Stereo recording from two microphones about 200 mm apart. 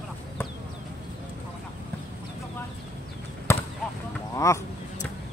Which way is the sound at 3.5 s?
15° left (ahead or behind).